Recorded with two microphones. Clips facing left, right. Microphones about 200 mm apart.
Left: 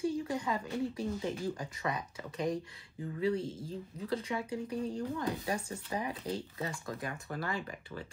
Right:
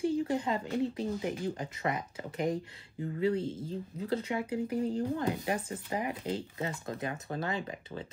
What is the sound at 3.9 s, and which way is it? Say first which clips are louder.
Speech: right 3 dB; 25° right (ahead or behind).